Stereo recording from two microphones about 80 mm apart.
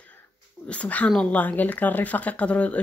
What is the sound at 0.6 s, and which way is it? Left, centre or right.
Speech, centre.